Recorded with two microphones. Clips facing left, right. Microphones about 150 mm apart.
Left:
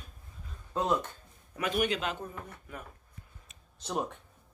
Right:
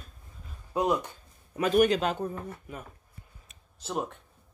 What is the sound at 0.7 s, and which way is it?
Speech, 15° right (ahead or behind).